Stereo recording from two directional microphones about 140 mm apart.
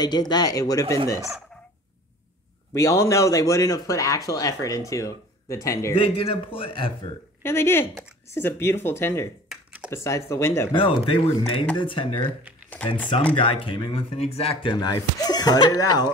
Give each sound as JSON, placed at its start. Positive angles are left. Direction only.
{"t": 0.0, "sound": "speech", "side_deg": 30}
{"t": 2.7, "sound": "speech", "side_deg": 25}
{"t": 5.9, "sound": "speech", "side_deg": 40}
{"t": 7.4, "sound": "speech", "side_deg": 15}
{"t": 9.5, "sound": "computer keyboard", "side_deg": -10}
{"t": 9.8, "sound": "speech", "side_deg": 20}
{"t": 10.7, "sound": "speech", "side_deg": 40}
{"t": 13.3, "sound": "speech", "side_deg": 40}